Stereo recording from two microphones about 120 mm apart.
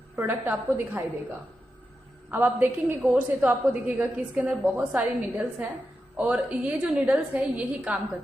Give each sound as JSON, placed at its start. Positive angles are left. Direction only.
{"t": 0.1, "sound": "a woman's voice", "side_deg": -15}
{"t": 2.3, "sound": "a woman's voice", "side_deg": -15}